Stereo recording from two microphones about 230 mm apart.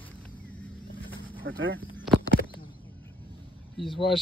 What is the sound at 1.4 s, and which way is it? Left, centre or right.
Speech, right.